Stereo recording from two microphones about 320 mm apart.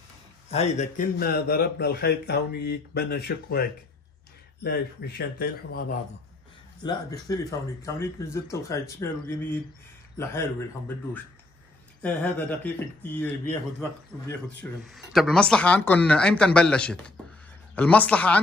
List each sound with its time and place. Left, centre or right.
0.5 s a man's voice: centre
6.8 s speech: centre
12.0 s speech: centre